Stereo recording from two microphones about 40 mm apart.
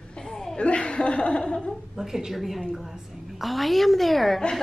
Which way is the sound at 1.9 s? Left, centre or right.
Centre.